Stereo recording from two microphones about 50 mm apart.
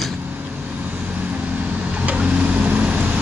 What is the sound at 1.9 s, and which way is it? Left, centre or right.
Vehicle, right.